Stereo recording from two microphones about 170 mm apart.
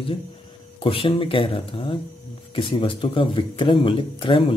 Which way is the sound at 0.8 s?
30° left (ahead or behind).